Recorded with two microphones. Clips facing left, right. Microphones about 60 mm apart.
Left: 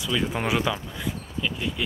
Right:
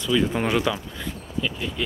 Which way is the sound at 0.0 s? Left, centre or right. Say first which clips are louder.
Right 4 dB; centre.